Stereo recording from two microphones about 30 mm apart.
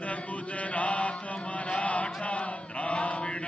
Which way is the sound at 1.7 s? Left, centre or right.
Left.